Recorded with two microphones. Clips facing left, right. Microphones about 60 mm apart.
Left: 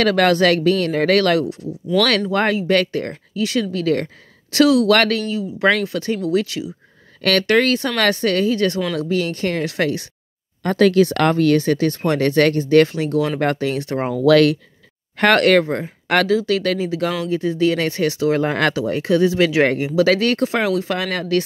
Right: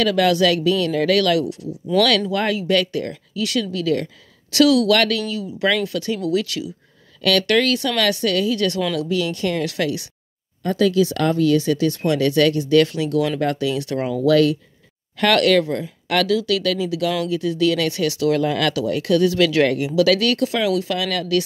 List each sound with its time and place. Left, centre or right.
0.0 s speech: left
7.2 s speech: left
10.6 s speech: left
13.4 s speech: left
14.1 s speech: left
15.1 s speech: left